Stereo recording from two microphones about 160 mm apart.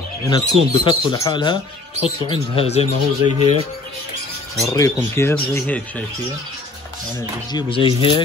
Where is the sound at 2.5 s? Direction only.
40° left (ahead or behind).